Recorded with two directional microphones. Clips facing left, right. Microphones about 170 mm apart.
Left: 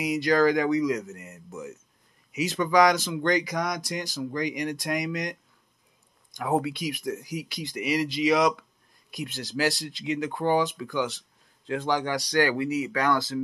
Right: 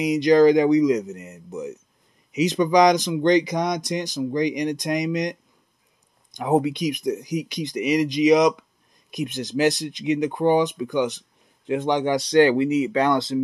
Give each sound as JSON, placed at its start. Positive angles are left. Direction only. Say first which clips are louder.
{"t": 0.0, "sound": "speech", "louder": "right 7 dB", "side_deg": -20}